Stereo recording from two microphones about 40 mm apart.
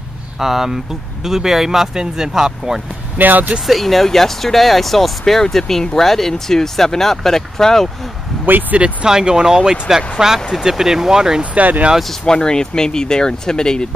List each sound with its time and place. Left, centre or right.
0.4 s speech: centre
3.2 s speech: right
3.6 s speech: centre
8.5 s speech: right
9.0 s speech: centre
11.5 s speech: right
12.3 s speech: centre